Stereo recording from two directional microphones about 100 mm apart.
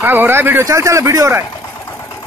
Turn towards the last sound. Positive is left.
turn(degrees=-30)  # may be behind; listen again after turning